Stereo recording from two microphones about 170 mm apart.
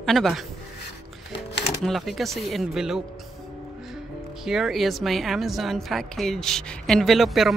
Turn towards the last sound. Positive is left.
turn(degrees=0)  # may be behind; listen again after turning